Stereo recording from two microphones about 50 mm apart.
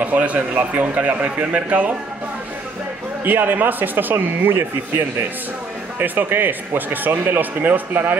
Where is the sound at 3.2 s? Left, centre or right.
Right.